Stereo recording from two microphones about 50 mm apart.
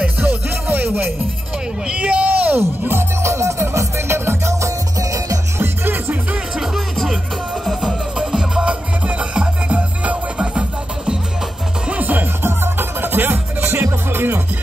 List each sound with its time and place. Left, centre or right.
0.0 s music: right
1.9 s speech: right
2.9 s music: right
3.7 s music: right
5.6 s music: right
6.6 s music: centre; by 10.6 s right
11.9 s music: right
12.4 s music: right